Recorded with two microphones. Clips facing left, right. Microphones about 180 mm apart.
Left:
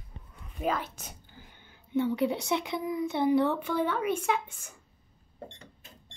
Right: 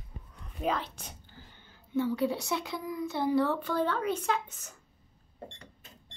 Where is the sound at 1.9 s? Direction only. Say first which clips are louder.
Left 2 dB; 20° left (ahead or behind).